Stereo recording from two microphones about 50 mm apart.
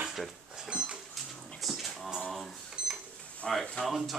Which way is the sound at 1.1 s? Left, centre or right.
Centre.